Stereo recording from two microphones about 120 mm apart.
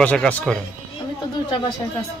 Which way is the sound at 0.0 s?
10° left (ahead or behind).